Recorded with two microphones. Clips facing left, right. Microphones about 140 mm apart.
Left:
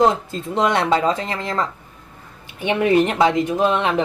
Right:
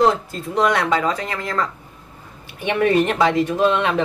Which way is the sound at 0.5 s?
25° left (ahead or behind).